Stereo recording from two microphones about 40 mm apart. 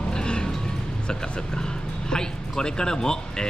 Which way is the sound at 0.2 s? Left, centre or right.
Left.